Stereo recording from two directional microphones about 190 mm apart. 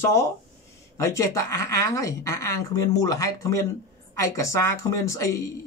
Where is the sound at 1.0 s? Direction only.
15° left (ahead or behind).